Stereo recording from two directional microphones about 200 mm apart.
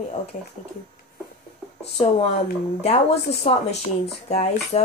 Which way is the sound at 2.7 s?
30° left (ahead or behind).